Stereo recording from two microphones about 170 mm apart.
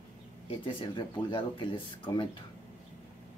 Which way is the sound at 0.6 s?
30° left (ahead or behind).